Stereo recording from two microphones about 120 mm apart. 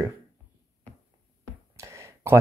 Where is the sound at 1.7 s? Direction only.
25° right (ahead or behind).